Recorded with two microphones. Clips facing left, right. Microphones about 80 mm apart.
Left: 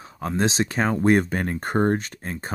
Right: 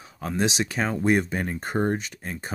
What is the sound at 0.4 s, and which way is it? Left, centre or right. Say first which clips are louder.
Speech: left 3 dB; left.